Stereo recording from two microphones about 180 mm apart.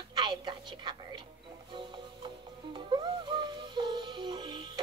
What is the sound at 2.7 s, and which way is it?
Music, 25° right (ahead or behind).